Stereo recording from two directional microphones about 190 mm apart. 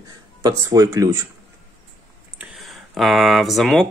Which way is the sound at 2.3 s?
Centre (ahead or behind).